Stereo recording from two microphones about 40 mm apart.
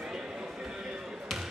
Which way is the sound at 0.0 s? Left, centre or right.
Centre.